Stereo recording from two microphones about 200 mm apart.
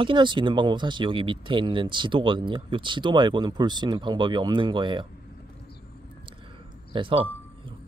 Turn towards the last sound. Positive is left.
turn(degrees=-25)  # may be behind; listen again after turning